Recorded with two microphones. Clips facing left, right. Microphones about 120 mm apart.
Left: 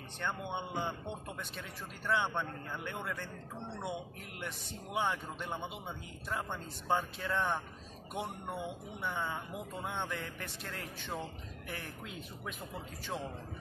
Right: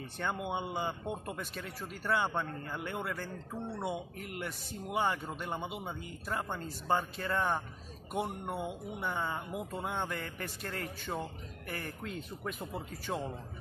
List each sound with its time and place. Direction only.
0.2 s speech: 5° right (ahead or behind)
3.5 s speech: 25° left (ahead or behind)
3.8 s speech: centre (ahead or behind)
13.1 s a man's voice: 20° right (ahead or behind)